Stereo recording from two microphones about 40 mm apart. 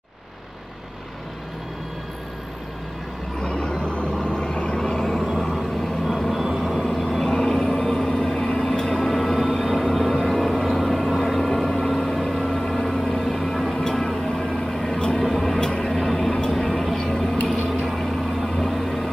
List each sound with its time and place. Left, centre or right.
3.3 s vehicle: left
4.7 s vehicle: centre
7.3 s vehicle: left
13.2 s music: centre
13.8 s vehicle: centre
16.0 s a sound: centre
16.5 s vehicle: centre
16.9 s a sound: centre